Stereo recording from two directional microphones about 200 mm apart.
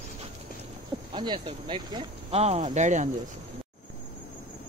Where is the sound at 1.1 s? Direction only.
25° right (ahead or behind).